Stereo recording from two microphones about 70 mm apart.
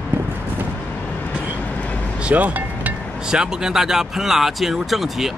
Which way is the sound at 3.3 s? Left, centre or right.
Centre.